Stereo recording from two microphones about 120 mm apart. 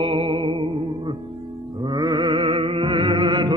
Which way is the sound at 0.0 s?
45° right (ahead or behind).